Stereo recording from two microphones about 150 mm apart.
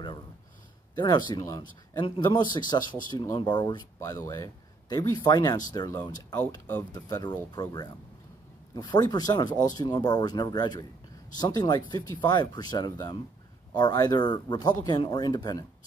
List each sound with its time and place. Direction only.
0.9 s speech: 25° left (ahead or behind)
6.5 s speech: 15° left (ahead or behind)
8.7 s speech: 25° left (ahead or behind)